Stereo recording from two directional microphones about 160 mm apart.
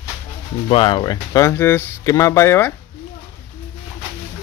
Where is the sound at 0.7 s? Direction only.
35° left (ahead or behind); by 2.7 s 15° left (ahead or behind).